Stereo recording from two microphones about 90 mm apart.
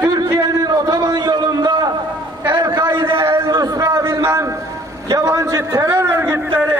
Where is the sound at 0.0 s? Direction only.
40° right (ahead or behind).